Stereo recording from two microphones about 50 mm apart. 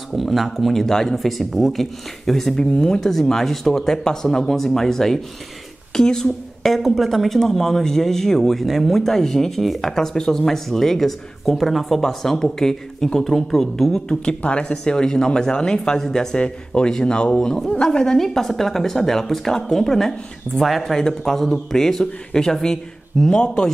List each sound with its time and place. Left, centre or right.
0.1 s a woman's voice: centre
2.5 s a woman's voice: centre